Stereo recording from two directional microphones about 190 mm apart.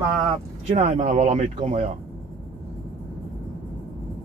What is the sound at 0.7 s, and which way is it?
Speech, 35° right (ahead or behind).